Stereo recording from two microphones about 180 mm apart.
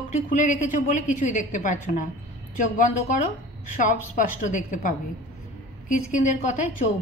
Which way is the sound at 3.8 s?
45° left (ahead or behind).